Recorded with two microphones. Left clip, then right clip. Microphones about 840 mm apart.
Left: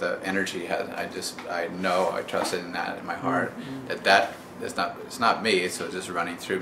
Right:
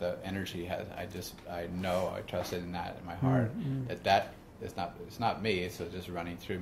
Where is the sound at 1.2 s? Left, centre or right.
Right.